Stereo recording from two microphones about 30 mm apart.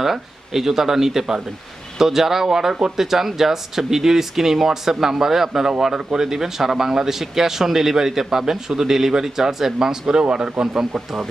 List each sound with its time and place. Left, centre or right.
0.0 s speech: centre
10.7 s speech: centre